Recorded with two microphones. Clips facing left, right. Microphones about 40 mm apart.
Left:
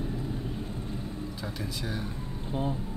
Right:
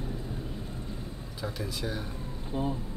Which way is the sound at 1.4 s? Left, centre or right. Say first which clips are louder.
Right 5 dB; centre.